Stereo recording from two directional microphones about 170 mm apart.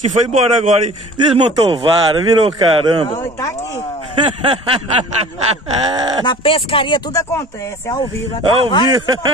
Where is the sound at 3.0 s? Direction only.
15° left (ahead or behind).